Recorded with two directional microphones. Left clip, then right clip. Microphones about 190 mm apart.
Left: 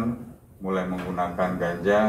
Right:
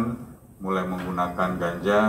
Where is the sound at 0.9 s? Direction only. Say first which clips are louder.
Right 1 dB; 5° right (ahead or behind).